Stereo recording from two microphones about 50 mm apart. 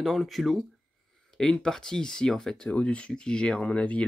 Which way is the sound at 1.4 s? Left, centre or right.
Centre.